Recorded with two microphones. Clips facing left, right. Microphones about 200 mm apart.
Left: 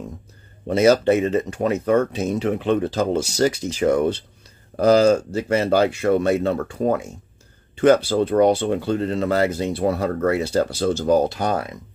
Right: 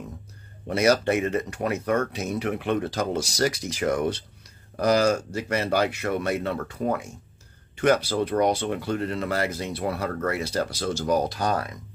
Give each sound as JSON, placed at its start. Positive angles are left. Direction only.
{"t": 0.7, "sound": "speech", "side_deg": 25}